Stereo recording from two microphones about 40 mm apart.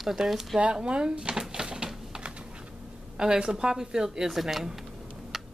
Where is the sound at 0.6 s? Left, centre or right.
Right.